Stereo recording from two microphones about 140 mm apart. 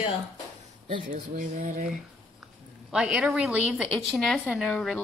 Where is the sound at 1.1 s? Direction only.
70° right (ahead or behind).